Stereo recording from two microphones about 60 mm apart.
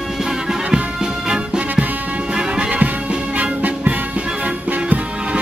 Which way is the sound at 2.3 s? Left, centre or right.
Centre.